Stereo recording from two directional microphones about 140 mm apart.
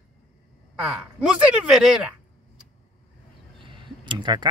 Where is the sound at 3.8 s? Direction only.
35° right (ahead or behind).